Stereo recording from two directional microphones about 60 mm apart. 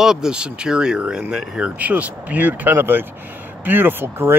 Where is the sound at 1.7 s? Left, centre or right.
Right.